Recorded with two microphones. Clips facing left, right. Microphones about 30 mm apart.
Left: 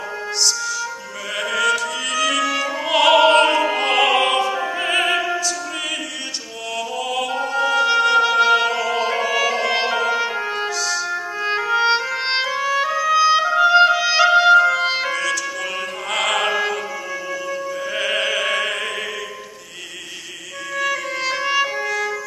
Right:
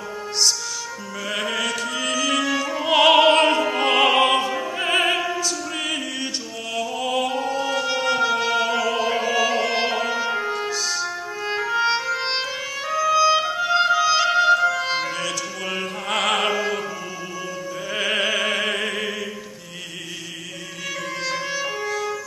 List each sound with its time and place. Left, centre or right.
1.3 s mantra: centre
2.6 s opera: centre
7.0 s music: centre
7.3 s music: centre
10.7 s music: centre
11.1 s music: centre
15.1 s music: centre
17.9 s music: centre
20.8 s music: centre
21.8 s emergency vehicle: centre